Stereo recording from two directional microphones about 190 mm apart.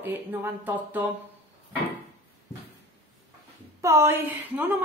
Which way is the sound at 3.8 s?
15° right (ahead or behind).